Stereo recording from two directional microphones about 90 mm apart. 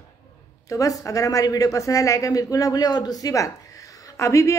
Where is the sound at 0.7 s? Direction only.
40° left (ahead or behind).